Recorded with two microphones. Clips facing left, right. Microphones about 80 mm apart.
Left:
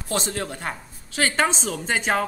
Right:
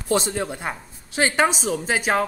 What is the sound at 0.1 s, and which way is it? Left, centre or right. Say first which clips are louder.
Speech: right 4 dB; centre.